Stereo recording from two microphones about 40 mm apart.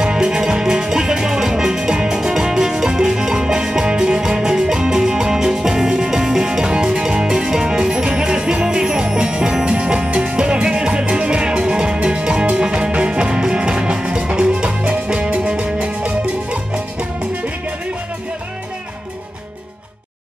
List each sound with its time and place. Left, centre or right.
0.0 s music: centre